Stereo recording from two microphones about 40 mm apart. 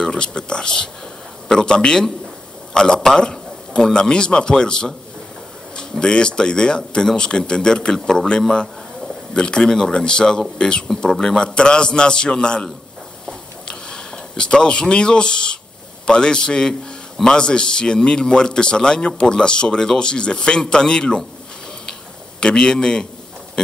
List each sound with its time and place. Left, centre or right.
0.0 s a man's voice: left
13.3 s a sound: left
16.1 s speech: left
22.4 s speech: left